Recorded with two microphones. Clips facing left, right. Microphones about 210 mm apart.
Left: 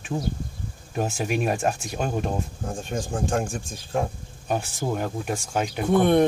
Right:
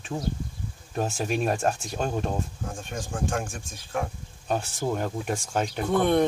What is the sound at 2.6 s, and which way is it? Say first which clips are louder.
Speech: left 5 dB; 35° left (ahead or behind).